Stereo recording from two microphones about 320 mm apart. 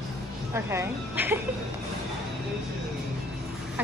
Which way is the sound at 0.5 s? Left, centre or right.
Centre.